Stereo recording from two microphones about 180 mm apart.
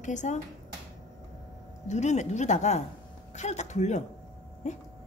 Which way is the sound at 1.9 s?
40° left (ahead or behind).